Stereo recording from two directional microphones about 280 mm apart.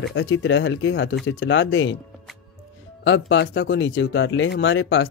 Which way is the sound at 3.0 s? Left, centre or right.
Left.